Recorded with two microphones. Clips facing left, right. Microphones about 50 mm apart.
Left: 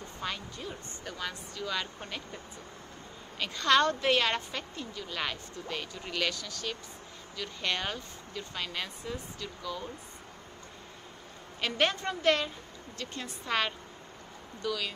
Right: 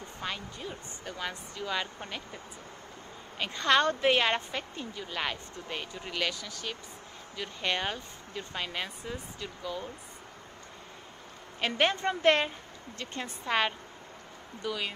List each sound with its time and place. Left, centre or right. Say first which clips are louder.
0.2 s a woman's voice: even; centre
3.3 s a woman's voice: even; centre
11.6 s a woman's voice: right 2 dB; centre
13.5 s a woman's voice: right 2 dB; centre